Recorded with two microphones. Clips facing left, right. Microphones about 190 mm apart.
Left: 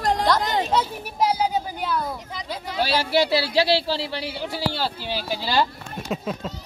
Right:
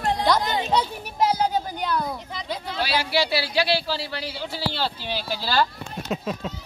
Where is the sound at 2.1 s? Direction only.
5° left (ahead or behind).